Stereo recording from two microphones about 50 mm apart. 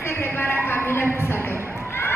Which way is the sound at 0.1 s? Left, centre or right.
Left.